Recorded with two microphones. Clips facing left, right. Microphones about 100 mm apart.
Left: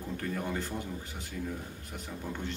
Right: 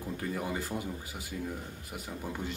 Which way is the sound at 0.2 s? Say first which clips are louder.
Even; 5° right (ahead or behind).